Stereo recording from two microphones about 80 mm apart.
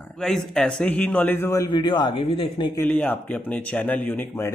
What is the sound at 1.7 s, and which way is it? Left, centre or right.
Speech, left.